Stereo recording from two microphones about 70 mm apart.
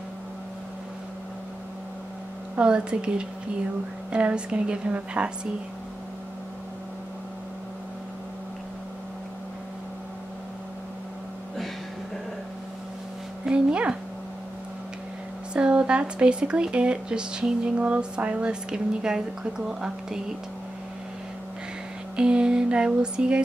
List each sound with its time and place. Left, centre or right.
2.6 s speech: centre
13.5 s a sound: centre
15.5 s speech: centre
22.1 s speech: centre